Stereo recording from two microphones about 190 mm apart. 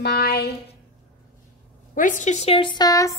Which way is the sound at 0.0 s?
60° left (ahead or behind).